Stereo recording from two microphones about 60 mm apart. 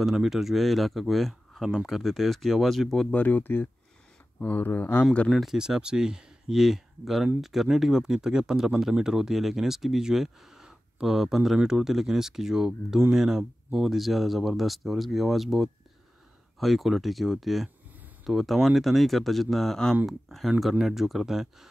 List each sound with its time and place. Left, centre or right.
0.0 s speech: centre
3.1 s speech: left
5.3 s speech: centre
5.6 s speech: centre